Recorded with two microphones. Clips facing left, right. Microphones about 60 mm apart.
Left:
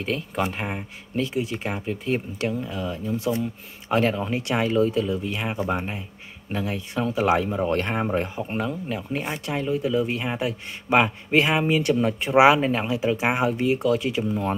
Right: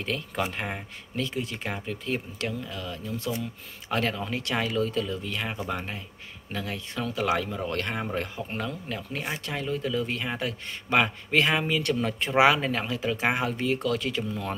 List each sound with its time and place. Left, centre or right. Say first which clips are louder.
0.0 s a man's voice: left 4 dB; centre